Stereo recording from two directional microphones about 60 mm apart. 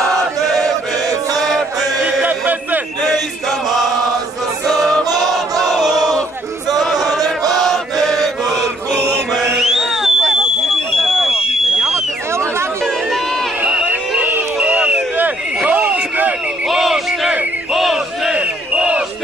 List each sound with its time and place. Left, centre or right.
2.2 s music: right
3.4 s chant: centre
4.6 s music: centre
5.6 s crowd: centre
6.7 s choir: centre
7.6 s chant: centre
9.6 s a sound: centre
14.7 s a sound: centre
16.6 s a sound: centre
17.7 s battle cry: centre
18.3 s battle cry: centre